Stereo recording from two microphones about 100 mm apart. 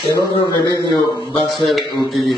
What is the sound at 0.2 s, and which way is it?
Speech, 40° right (ahead or behind).